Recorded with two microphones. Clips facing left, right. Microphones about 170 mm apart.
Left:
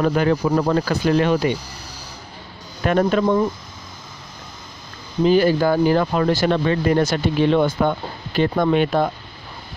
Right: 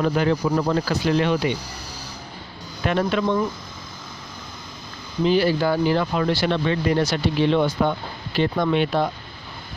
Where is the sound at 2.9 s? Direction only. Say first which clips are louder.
Left 4 dB; 45° left (ahead or behind).